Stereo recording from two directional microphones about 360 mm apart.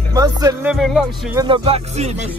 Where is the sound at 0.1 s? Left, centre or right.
Centre.